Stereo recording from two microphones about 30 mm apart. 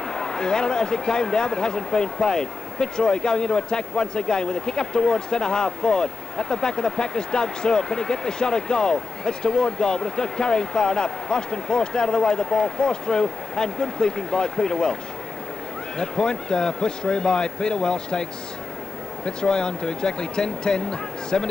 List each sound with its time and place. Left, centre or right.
0.1 s speech: left
16.0 s speech: left
19.2 s speech: left